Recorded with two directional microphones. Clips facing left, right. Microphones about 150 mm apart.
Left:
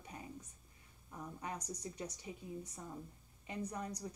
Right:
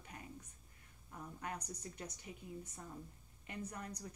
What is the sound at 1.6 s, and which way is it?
Speech, 10° left (ahead or behind).